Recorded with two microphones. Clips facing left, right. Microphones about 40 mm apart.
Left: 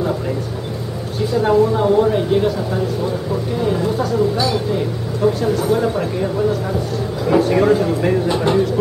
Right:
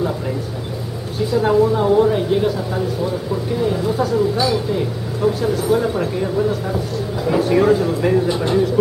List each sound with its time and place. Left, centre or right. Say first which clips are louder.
1.3 s a woman's voice: even; centre
7.2 s a woman's voice: left 1 dB; centre